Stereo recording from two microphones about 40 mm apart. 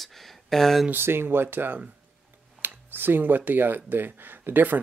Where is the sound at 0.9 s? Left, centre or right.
Right.